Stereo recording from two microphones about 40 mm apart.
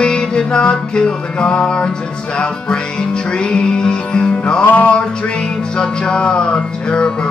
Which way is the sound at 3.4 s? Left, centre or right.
Left.